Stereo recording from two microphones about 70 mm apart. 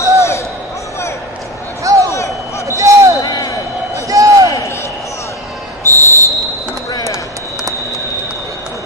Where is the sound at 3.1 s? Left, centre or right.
Left.